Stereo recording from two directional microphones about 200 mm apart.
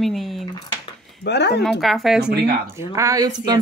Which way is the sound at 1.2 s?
60° left (ahead or behind).